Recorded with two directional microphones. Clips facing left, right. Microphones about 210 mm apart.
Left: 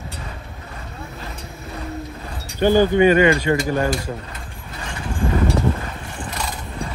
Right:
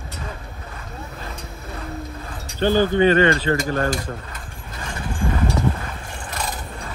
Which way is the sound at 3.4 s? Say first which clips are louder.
Left 2 dB; 15° left (ahead or behind).